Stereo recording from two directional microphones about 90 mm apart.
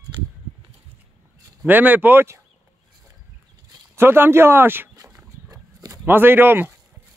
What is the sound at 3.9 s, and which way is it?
Speech, 25° right (ahead or behind).